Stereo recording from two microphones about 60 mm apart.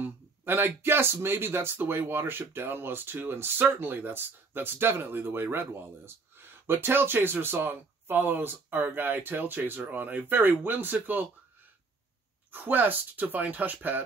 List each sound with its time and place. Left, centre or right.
0.0 s speech: right
12.4 s speech: right